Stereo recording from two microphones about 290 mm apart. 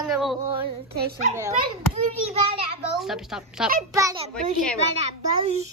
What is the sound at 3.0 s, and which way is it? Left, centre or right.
Speech, centre.